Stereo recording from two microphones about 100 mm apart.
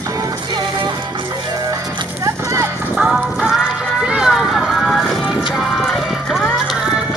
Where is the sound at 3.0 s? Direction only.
5° right (ahead or behind).